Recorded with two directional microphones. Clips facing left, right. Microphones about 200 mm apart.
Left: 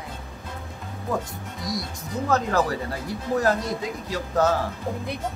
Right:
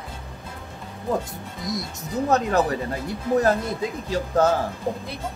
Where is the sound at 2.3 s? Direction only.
20° right (ahead or behind).